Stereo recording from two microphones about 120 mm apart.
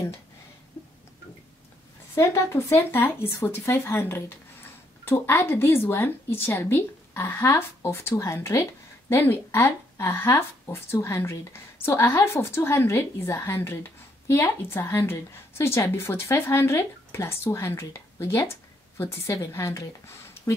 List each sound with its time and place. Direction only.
2.1 s a woman's voice: 25° left (ahead or behind)